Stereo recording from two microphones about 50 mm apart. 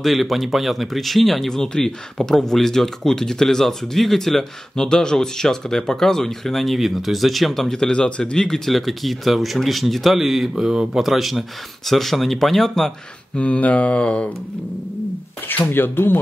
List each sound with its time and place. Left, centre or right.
0.0 s speech: centre
13.4 s mantra: left
15.4 s speech: left